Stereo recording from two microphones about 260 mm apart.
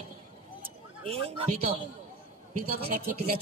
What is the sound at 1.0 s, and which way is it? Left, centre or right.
Speech, right.